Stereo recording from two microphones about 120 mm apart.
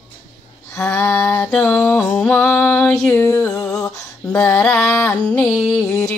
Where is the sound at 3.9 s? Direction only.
25° left (ahead or behind).